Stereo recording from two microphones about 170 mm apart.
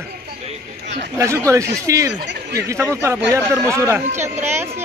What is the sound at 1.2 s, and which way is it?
Speech, 15° right (ahead or behind).